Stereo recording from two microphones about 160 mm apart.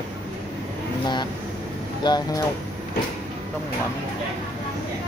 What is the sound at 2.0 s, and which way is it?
Speech, 25° left (ahead or behind).